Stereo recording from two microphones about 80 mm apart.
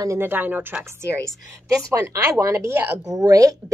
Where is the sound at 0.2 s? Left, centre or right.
Right.